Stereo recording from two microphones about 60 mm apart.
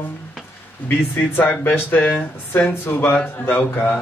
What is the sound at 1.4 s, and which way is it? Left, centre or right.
Mantra, left.